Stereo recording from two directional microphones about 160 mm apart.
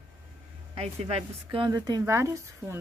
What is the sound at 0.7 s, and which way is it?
Speech, 40° right (ahead or behind).